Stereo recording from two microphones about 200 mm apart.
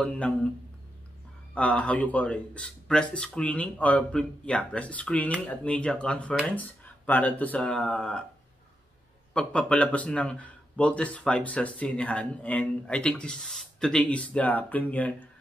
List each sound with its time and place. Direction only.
0.0 s speech: 5° left (ahead or behind)
1.5 s speech: 5° left (ahead or behind)
9.3 s speech: 5° left (ahead or behind)